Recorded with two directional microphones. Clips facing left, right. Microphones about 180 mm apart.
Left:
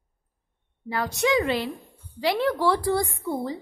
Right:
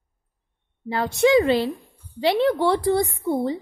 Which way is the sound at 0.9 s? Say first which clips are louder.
Right 6 dB; 25° right (ahead or behind).